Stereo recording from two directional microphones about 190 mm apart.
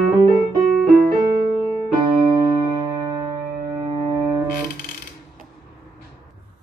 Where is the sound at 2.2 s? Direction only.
20° right (ahead or behind).